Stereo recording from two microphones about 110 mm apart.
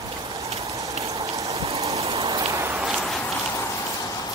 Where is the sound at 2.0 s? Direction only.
60° right (ahead or behind).